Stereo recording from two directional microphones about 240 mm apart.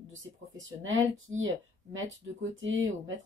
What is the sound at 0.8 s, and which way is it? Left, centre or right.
Speech, right.